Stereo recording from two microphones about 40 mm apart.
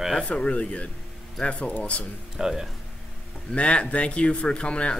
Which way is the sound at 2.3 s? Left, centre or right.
Centre.